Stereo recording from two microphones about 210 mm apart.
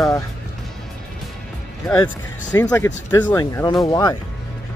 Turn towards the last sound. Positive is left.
turn(degrees=20)  # may be behind; listen again after turning